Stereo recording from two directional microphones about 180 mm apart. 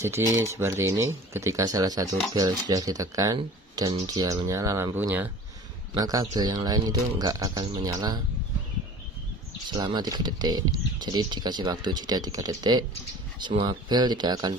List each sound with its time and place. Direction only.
0.4 s speech: 15° right (ahead or behind)
9.7 s speech: 25° right (ahead or behind)